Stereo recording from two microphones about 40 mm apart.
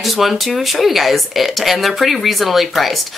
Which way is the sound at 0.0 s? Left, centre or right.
Centre.